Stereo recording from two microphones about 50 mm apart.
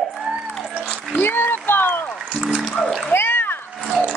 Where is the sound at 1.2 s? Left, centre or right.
Left.